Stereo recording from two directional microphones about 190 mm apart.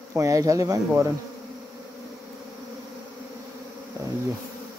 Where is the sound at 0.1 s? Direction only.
15° right (ahead or behind).